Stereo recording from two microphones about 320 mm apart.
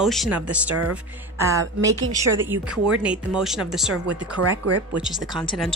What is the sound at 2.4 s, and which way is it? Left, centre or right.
A woman's voice, centre.